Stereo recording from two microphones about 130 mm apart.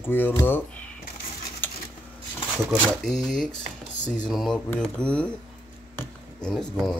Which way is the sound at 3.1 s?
5° left (ahead or behind).